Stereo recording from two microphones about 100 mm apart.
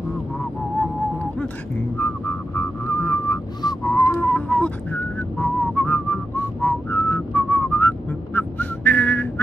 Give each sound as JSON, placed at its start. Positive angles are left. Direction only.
{"t": 2.0, "sound": "whistling", "side_deg": 20}